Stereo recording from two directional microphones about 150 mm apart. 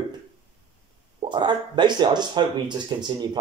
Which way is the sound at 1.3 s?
30° right (ahead or behind).